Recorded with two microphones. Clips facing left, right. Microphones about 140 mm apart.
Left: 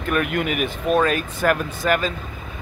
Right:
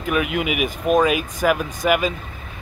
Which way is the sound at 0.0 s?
5° right (ahead or behind).